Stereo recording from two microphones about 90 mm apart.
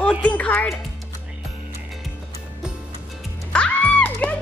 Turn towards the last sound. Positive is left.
turn(degrees=15)  # may be behind; listen again after turning